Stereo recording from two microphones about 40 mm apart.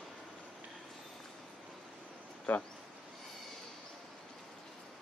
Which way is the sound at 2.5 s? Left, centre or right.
Left.